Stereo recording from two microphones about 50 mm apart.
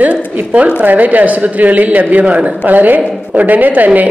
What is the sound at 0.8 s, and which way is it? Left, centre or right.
A woman's voice, right.